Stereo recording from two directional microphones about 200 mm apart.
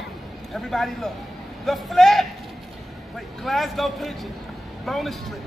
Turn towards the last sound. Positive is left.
turn(degrees=0)  # may be behind; listen again after turning